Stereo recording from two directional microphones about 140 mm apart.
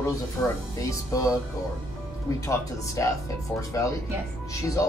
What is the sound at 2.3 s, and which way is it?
Speech, 25° left (ahead or behind).